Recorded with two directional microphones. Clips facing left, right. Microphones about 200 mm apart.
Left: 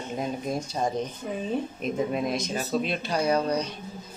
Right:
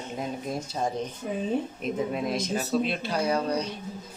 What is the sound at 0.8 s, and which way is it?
Speech, 5° left (ahead or behind).